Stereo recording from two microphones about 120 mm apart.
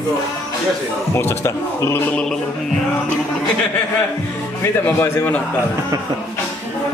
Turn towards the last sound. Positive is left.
turn(degrees=15)  # may be behind; listen again after turning